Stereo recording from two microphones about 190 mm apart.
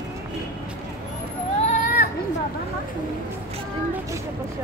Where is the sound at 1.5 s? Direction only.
40° left (ahead or behind).